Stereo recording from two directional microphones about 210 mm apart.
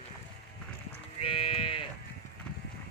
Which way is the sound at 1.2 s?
25° left (ahead or behind).